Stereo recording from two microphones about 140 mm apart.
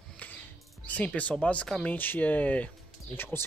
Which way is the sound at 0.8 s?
10° left (ahead or behind).